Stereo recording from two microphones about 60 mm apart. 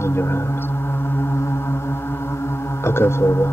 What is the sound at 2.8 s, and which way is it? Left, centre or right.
Music, left.